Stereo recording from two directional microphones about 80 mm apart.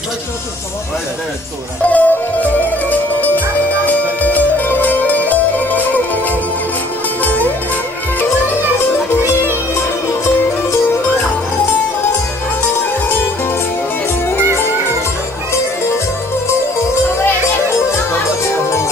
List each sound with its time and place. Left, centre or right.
1.9 s music: centre
9.1 s music: left